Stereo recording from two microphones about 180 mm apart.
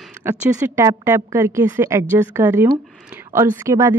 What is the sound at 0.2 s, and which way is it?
A woman's voice, 15° right (ahead or behind).